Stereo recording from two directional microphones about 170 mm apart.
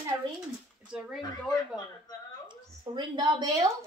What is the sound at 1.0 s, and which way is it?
Speech, centre (ahead or behind).